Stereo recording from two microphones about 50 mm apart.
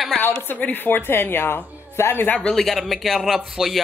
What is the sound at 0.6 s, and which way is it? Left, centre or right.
A woman's voice, left.